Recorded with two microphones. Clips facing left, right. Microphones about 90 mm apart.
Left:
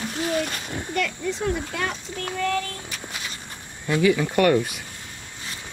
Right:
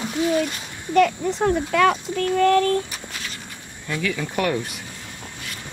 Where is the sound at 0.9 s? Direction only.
45° right (ahead or behind).